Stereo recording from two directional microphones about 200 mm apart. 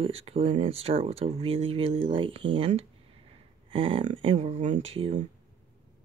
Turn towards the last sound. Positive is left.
turn(degrees=-30)  # may be behind; listen again after turning